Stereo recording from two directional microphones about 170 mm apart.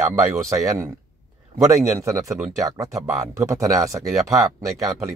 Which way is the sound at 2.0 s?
20° right (ahead or behind).